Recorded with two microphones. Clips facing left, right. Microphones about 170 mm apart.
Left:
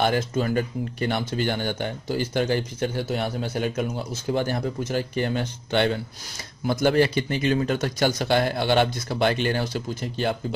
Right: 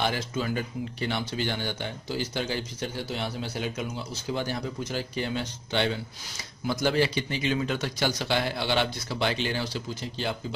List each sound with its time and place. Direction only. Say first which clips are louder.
0.0 s speech: left 6 dB; 50° left (ahead or behind)